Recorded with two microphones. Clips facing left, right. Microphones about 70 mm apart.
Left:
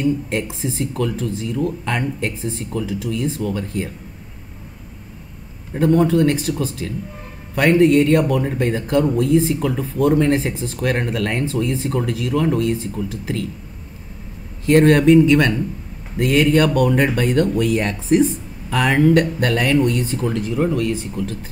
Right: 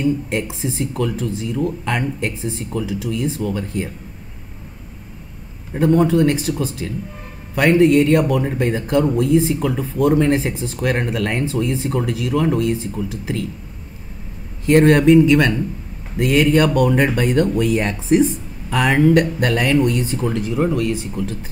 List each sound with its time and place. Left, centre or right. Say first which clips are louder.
0.0 s a man's voice: even; centre
5.7 s a man's voice: even; centre
14.7 s a man's voice: even; centre